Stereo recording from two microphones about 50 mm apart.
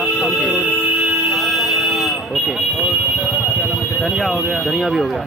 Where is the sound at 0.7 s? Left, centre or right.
Right.